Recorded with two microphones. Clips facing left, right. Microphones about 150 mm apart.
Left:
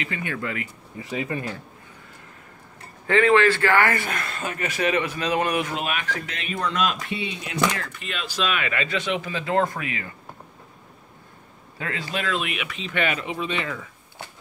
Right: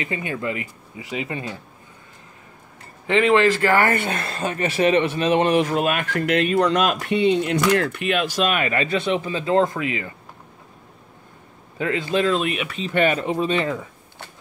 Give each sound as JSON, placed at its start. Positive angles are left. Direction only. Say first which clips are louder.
{"t": 0.0, "sound": "speech", "louder": "right 3 dB", "side_deg": -20}
{"t": 3.1, "sound": "speech", "louder": "right 1 dB", "side_deg": -25}
{"t": 5.7, "sound": "speech", "louder": "right 6 dB", "side_deg": -45}
{"t": 11.8, "sound": "speech", "louder": "right 8 dB", "side_deg": -25}